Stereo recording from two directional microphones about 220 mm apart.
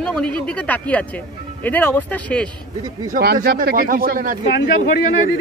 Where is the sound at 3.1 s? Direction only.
40° right (ahead or behind).